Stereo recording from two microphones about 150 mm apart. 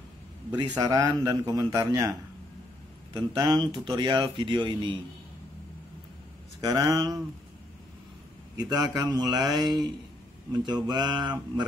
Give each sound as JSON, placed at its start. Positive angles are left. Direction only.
{"t": 0.5, "sound": "a man's voice", "side_deg": -25}
{"t": 3.2, "sound": "speech", "side_deg": -30}
{"t": 6.6, "sound": "a man's voice", "side_deg": -25}
{"t": 8.9, "sound": "a man's voice", "side_deg": -25}